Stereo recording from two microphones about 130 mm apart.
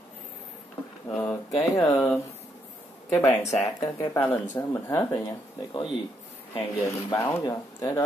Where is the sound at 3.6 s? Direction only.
25° left (ahead or behind).